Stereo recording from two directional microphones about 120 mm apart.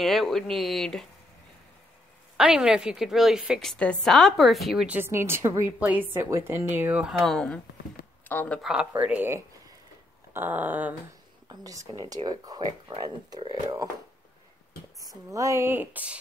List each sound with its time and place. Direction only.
0.0 s a woman's voice: centre (ahead or behind)
2.3 s a woman's voice: 5° right (ahead or behind)
4.8 s a woman's voice: 15° right (ahead or behind); by 8.5 s 15° left (ahead or behind)
8.6 s speech: 10° right (ahead or behind)
11.4 s speech: 30° right (ahead or behind)
15.0 s speech: 30° right (ahead or behind); by 16.2 s 15° right (ahead or behind)